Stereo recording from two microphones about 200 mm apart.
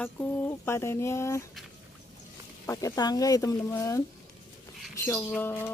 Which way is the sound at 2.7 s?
20° left (ahead or behind).